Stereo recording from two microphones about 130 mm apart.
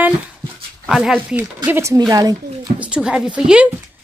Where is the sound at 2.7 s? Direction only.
10° right (ahead or behind).